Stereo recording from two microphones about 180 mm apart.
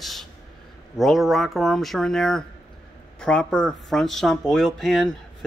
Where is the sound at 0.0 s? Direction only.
Centre (ahead or behind).